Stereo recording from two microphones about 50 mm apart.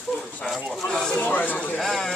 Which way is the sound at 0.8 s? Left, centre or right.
Centre.